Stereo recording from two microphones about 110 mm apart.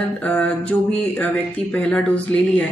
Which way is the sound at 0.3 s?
15° left (ahead or behind).